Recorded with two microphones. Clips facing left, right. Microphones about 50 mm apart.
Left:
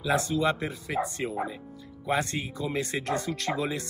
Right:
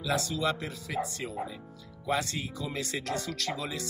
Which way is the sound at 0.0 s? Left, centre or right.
Left.